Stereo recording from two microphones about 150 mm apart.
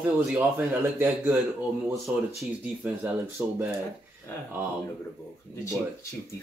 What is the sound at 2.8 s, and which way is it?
Speech, 5° right (ahead or behind).